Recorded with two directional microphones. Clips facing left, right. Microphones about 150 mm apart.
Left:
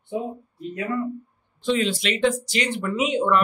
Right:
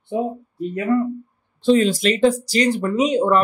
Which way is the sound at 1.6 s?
40° right (ahead or behind).